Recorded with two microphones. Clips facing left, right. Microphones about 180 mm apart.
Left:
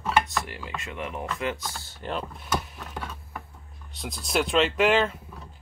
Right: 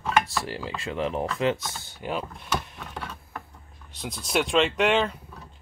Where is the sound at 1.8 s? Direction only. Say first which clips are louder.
Right 1 dB; 10° right (ahead or behind).